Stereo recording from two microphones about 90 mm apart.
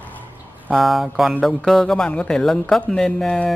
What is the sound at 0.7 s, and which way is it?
Speech, centre (ahead or behind).